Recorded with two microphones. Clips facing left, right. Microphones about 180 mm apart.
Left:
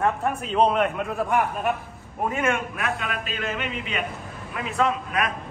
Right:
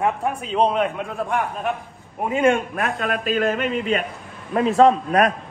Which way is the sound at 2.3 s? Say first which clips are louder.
Right 8 dB; 30° right (ahead or behind).